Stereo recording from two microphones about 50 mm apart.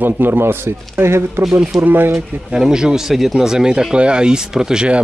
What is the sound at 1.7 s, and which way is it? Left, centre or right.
Speech, right.